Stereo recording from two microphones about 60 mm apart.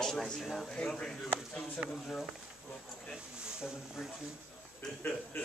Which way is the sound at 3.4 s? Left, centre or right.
Centre.